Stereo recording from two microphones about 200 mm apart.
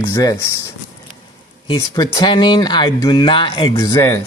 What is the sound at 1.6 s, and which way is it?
Speech, 20° left (ahead or behind).